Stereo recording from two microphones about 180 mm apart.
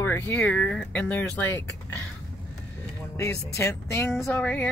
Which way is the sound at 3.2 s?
15° left (ahead or behind).